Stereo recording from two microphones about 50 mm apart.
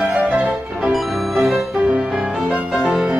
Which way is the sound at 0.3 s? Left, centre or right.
Right.